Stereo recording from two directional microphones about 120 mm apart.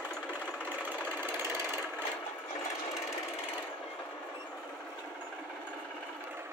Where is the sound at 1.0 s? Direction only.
20° right (ahead or behind).